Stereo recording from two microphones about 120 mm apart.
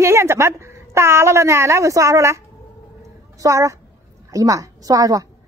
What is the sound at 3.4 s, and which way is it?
A woman's voice, 25° right (ahead or behind).